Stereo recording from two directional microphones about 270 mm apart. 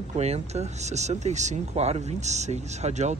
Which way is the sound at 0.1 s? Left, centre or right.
Right.